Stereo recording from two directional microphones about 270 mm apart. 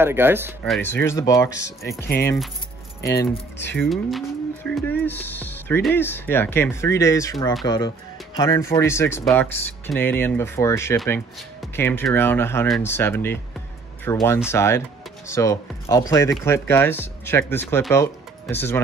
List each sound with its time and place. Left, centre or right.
0.0 s speech: centre
0.7 s speech: centre
3.2 s speech: left
3.7 s speech: centre